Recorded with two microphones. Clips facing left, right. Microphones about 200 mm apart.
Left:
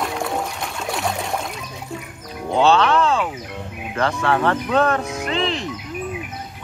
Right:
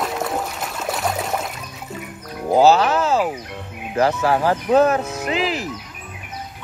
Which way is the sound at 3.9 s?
35° right (ahead or behind).